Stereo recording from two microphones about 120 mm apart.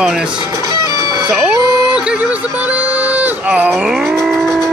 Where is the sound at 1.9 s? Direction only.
10° right (ahead or behind).